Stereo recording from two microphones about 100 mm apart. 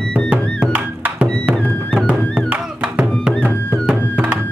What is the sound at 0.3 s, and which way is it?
Music, 15° right (ahead or behind).